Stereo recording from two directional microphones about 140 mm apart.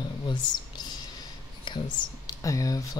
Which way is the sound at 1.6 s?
30° left (ahead or behind).